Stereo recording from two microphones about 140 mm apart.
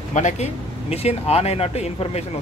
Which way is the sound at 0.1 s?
55° left (ahead or behind).